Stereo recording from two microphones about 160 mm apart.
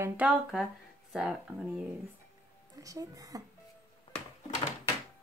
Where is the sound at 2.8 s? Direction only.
20° right (ahead or behind).